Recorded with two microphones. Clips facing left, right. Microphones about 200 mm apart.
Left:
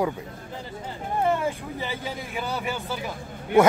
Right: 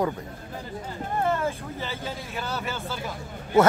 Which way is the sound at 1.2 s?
15° left (ahead or behind).